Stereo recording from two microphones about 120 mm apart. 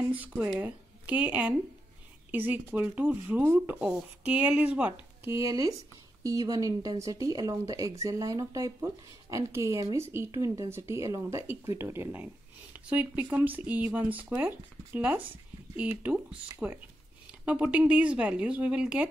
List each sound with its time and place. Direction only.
0.1 s speech: 15° right (ahead or behind)
5.2 s speech: 25° right (ahead or behind); by 19.0 s 10° right (ahead or behind)